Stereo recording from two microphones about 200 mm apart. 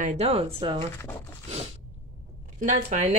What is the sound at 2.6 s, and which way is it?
Speech, 40° right (ahead or behind).